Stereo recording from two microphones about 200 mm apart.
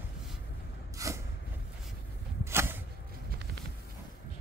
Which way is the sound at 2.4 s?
10° right (ahead or behind).